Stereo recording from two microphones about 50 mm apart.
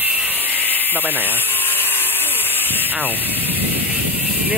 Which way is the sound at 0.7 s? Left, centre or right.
Left.